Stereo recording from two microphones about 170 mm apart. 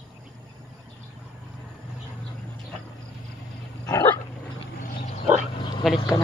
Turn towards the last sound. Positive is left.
turn(degrees=0)  # may be behind; listen again after turning